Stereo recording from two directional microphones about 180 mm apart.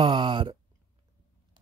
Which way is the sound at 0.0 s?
25° right (ahead or behind).